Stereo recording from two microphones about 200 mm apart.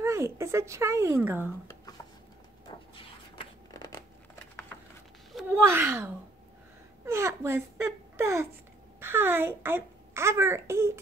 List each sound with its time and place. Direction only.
0.0 s speech: 15° right (ahead or behind)
2.9 s a sound: 20° left (ahead or behind)
5.5 s speech: 10° right (ahead or behind)
7.1 s whimper: 15° right (ahead or behind)
9.0 s a child's voice: 10° right (ahead or behind)